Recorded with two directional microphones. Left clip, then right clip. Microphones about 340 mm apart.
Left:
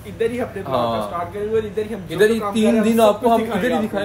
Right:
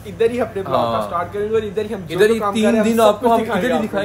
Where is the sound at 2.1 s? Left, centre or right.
Centre.